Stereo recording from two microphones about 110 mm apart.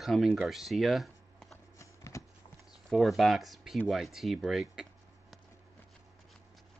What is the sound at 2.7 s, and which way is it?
Speech, centre (ahead or behind).